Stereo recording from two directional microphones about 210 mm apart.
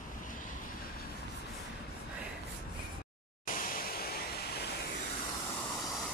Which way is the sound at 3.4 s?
45° left (ahead or behind).